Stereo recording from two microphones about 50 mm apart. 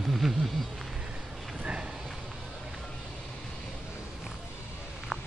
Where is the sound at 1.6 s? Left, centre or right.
Right.